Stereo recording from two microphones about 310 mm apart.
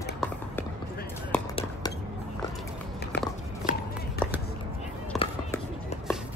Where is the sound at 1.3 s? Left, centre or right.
Centre.